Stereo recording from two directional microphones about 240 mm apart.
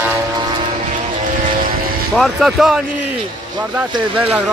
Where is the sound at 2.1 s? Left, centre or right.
Centre.